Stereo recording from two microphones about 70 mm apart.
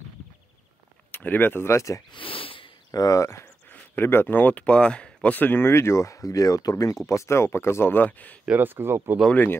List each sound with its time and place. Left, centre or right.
1.1 s speech: left
3.6 s speech: left
8.5 s speech: right
9.3 s speech: left